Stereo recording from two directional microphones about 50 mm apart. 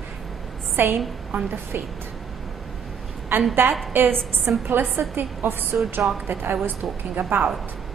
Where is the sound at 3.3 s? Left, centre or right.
Right.